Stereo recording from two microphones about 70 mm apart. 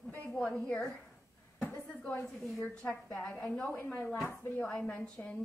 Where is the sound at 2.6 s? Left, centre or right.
Centre.